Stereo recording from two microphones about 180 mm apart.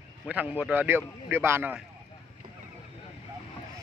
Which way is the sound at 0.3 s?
5° right (ahead or behind).